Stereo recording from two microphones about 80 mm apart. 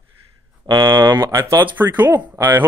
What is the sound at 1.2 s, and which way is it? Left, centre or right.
Speech, right.